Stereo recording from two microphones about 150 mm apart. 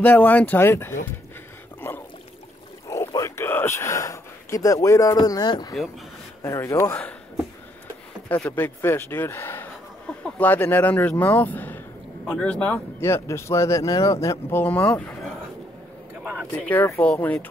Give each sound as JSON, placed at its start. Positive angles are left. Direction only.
{"t": 0.0, "sound": "speech", "side_deg": 10}
{"t": 2.9, "sound": "speech", "side_deg": 20}
{"t": 16.5, "sound": "speech", "side_deg": 10}